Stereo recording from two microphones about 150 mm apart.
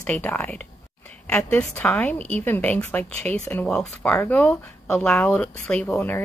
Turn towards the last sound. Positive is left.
turn(degrees=15)  # may be behind; listen again after turning